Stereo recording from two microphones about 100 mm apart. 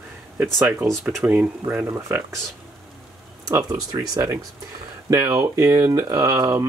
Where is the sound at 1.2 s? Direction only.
15° right (ahead or behind).